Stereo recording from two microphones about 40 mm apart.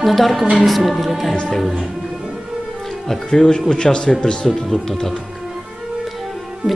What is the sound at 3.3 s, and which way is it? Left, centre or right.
Speech, centre.